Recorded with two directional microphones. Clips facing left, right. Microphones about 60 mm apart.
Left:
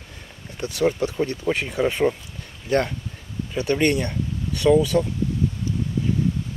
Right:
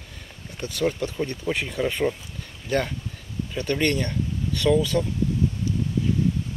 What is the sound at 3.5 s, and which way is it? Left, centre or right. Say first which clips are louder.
Speech: left 3 dB; centre.